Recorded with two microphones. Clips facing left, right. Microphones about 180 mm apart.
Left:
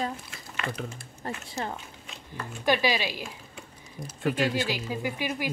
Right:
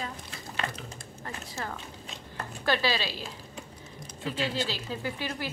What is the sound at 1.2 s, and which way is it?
Speech, 30° left (ahead or behind).